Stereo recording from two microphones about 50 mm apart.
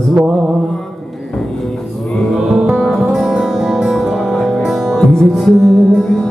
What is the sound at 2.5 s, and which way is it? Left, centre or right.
Music, centre.